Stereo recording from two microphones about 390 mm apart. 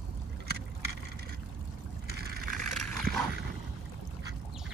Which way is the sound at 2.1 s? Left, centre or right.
Right.